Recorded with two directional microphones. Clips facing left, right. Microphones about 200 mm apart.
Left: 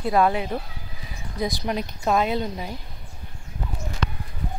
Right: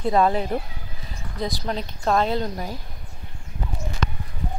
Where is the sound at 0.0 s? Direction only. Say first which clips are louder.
Right 1 dB; 5° left (ahead or behind).